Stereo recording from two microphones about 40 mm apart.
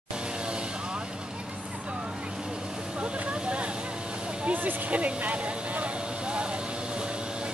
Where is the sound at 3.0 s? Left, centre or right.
Right.